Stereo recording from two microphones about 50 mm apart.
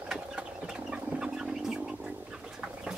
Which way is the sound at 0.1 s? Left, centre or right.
Centre.